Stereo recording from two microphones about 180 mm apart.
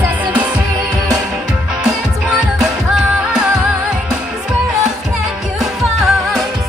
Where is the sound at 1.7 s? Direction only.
5° right (ahead or behind).